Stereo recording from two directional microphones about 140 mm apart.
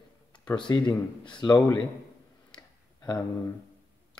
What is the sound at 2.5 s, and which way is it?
Tick-tock, 30° left (ahead or behind).